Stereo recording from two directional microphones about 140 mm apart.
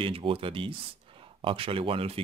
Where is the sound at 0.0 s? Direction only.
40° right (ahead or behind).